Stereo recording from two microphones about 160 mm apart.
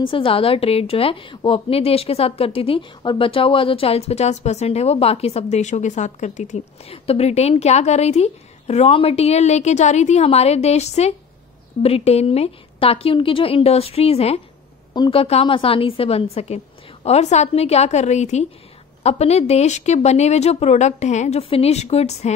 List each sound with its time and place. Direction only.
0.0 s a woman's voice: 30° left (ahead or behind); by 6.6 s 50° left (ahead or behind)
6.9 s a woman's voice: 40° left (ahead or behind)